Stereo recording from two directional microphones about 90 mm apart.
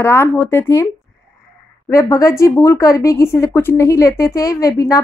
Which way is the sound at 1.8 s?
35° left (ahead or behind).